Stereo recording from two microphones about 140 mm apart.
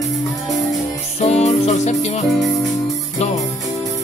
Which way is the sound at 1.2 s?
50° left (ahead or behind).